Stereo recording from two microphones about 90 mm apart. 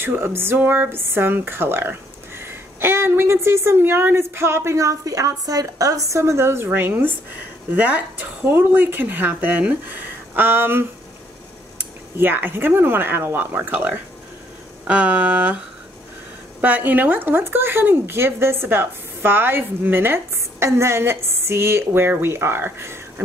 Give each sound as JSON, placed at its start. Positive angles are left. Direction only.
{"t": 0.0, "sound": "speech", "side_deg": -25}
{"t": 14.9, "sound": "a sound", "side_deg": -15}
{"t": 16.6, "sound": "speech", "side_deg": -20}